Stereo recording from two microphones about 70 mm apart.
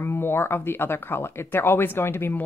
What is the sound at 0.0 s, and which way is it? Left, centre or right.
Speech, left.